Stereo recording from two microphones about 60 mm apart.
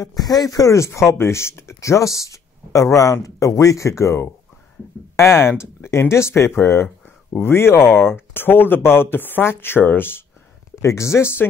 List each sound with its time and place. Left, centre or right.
0.0 s speech: left
10.8 s speech: left